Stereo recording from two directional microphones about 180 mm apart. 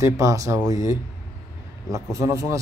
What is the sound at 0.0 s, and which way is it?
Speech, 15° right (ahead or behind).